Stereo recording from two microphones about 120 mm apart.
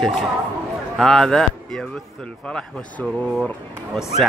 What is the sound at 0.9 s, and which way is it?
Speech, 5° left (ahead or behind).